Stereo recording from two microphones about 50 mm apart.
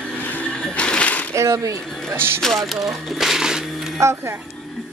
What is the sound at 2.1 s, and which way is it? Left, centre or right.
Speech, right.